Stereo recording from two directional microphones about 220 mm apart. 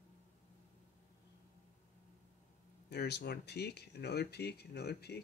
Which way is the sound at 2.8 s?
50° left (ahead or behind).